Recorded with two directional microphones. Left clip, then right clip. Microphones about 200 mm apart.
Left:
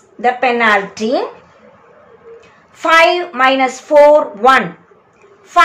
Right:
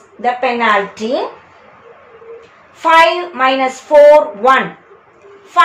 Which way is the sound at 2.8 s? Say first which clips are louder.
Right 1 dB; 25° left (ahead or behind).